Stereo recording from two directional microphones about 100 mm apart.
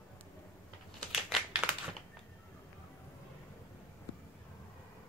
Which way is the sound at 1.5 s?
15° right (ahead or behind).